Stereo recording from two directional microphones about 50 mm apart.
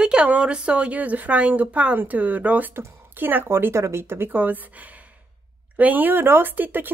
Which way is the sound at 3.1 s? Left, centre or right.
Right.